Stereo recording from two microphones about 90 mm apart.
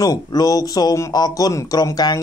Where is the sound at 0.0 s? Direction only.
45° left (ahead or behind).